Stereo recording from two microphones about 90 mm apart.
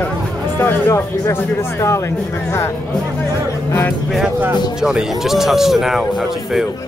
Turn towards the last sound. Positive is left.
turn(degrees=-5)  # may be behind; listen again after turning